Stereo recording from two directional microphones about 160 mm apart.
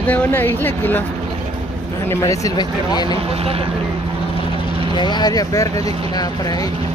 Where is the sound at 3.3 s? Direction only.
35° right (ahead or behind).